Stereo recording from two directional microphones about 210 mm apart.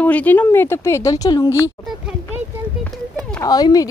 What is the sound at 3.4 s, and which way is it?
Speech, 20° left (ahead or behind).